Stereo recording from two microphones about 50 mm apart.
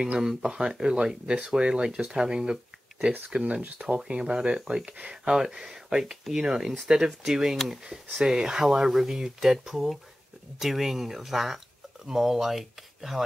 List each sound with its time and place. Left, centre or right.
0.0 s speech: centre
7.8 s speech: centre